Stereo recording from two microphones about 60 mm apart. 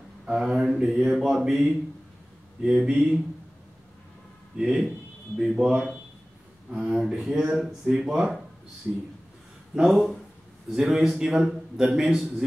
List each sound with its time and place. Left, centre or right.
0.2 s a man's voice: centre
2.6 s a man's voice: centre
4.6 s a man's voice: centre